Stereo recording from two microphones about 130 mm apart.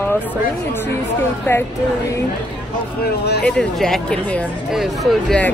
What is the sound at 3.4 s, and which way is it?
Speech, 5° left (ahead or behind).